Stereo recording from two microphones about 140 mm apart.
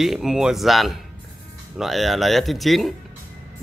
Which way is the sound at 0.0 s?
Centre (ahead or behind).